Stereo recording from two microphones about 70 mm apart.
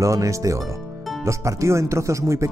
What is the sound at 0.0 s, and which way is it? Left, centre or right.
Speech, right.